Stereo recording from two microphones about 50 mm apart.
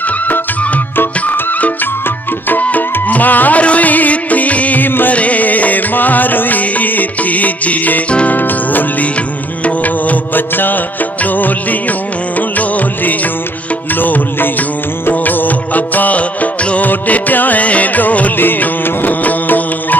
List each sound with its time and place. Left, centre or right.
2.5 s music: left
5.1 s music: left
9.8 s music: left
12.4 s music: left